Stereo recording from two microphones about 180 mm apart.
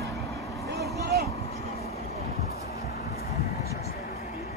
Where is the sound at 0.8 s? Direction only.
60° right (ahead or behind).